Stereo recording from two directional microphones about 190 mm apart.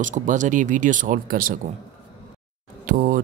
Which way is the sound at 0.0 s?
40° right (ahead or behind).